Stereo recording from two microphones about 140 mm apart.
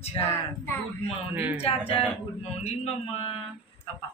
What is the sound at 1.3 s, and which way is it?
Speech, 15° right (ahead or behind).